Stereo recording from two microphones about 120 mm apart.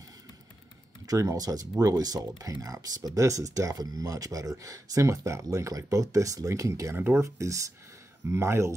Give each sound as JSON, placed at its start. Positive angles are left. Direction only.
{"t": 1.0, "sound": "speech", "side_deg": -30}